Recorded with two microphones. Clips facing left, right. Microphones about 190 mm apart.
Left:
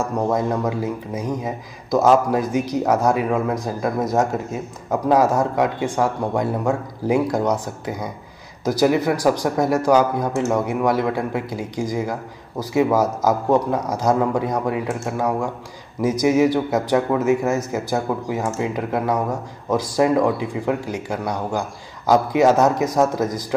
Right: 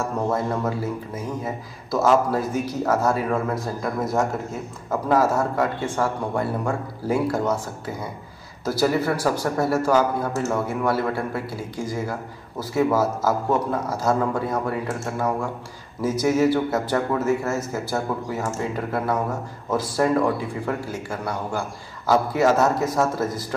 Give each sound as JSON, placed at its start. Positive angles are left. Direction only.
{"t": 0.3, "sound": "a man's voice", "side_deg": 15}